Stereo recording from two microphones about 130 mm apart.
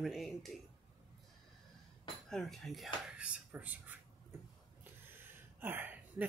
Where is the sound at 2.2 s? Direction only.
5° left (ahead or behind); by 4.0 s 15° right (ahead or behind).